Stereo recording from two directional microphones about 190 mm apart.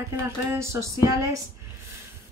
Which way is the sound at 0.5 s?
15° right (ahead or behind).